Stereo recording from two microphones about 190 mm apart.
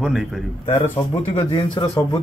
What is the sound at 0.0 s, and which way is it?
Speech, 5° right (ahead or behind).